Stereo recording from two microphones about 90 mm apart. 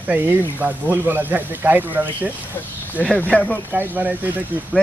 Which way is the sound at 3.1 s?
15° left (ahead or behind).